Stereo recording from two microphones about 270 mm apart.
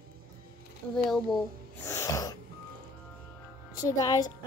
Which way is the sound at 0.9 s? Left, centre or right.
Centre.